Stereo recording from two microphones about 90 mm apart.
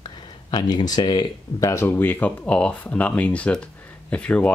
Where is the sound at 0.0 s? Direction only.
55° left (ahead or behind).